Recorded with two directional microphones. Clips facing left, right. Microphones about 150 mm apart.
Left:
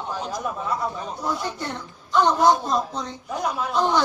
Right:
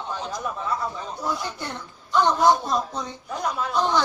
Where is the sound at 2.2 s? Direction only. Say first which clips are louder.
Left 1 dB; 20° left (ahead or behind).